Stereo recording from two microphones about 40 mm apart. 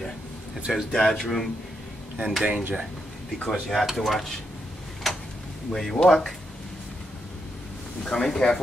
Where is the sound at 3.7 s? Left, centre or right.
Centre.